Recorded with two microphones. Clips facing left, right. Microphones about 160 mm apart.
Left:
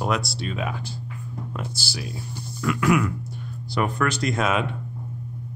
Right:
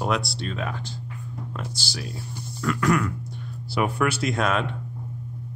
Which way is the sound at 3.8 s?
10° right (ahead or behind).